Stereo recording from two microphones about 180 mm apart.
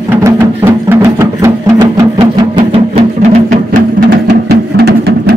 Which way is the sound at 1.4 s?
20° right (ahead or behind).